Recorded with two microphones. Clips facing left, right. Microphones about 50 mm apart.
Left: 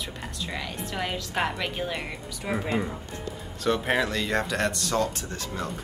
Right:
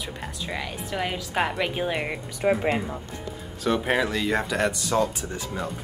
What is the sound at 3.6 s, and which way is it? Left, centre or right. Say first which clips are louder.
Speech: right 1 dB; centre.